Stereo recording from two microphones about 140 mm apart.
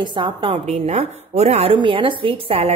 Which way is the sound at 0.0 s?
35° right (ahead or behind).